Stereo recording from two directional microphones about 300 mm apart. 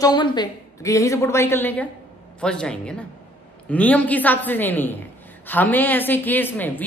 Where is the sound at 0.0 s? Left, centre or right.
Centre.